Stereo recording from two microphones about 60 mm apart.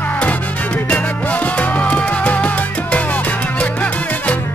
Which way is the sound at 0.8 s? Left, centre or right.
Left.